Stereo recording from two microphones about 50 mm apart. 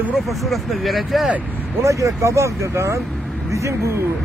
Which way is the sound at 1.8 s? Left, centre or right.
Right.